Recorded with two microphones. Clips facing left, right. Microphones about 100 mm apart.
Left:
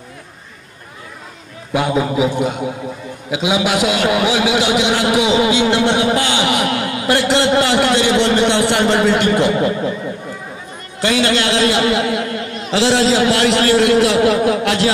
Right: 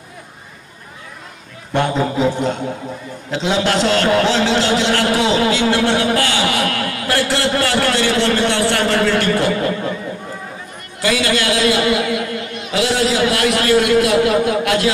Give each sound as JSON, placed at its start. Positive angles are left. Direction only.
{"t": 1.7, "sound": "a man's voice", "side_deg": 5}
{"t": 11.0, "sound": "a man's voice", "side_deg": 25}